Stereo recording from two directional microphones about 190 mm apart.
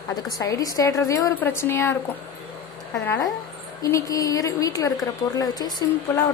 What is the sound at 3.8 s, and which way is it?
Speech, 15° left (ahead or behind).